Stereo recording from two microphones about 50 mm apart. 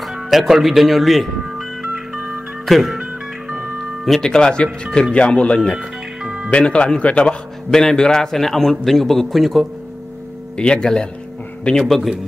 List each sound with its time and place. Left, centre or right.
0.1 s speech: centre
1.8 s music: centre
2.6 s a man's voice: centre
3.0 s music: centre
4.0 s speech: centre
4.3 s a man's voice: centre
6.2 s music: centre
6.5 s speech: left
7.7 s a man's voice: centre
10.6 s speech: centre
11.8 s a man's voice: centre